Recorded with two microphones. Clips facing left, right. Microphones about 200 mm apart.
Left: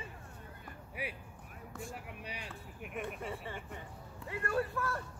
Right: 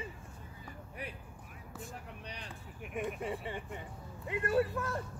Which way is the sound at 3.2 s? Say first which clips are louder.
Right 4 dB; 15° right (ahead or behind).